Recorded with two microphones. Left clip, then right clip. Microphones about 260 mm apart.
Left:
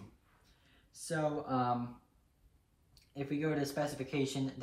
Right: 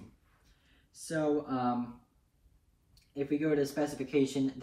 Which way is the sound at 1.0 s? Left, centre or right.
Left.